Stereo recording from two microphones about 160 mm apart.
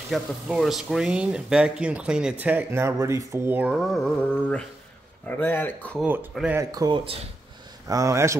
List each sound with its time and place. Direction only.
0.1 s speech: centre (ahead or behind)
6.5 s a man's voice: 20° right (ahead or behind)